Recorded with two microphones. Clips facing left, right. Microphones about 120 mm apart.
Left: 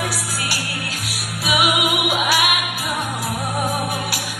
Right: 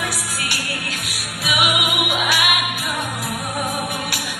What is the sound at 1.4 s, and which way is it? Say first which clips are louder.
Music: left 2 dB; 35° left (ahead or behind).